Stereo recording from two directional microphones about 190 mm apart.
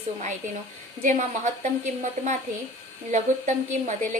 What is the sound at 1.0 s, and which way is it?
Speech, 40° right (ahead or behind).